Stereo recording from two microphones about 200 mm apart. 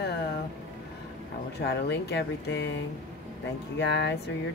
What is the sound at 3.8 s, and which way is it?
Speech, 60° left (ahead or behind).